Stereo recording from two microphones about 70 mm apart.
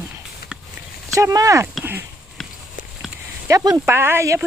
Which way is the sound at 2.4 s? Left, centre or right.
Centre.